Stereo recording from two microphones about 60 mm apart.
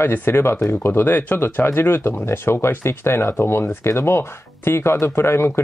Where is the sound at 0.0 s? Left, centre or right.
Left.